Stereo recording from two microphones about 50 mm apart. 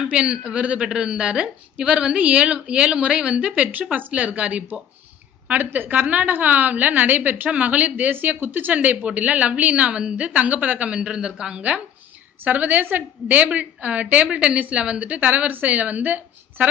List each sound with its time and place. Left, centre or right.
0.1 s a woman's voice: centre
8.1 s a woman's voice: right
8.7 s a woman's voice: right
12.4 s a woman's voice: right